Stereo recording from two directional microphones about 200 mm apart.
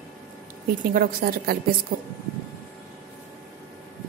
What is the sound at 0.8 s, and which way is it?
Speech, 45° right (ahead or behind).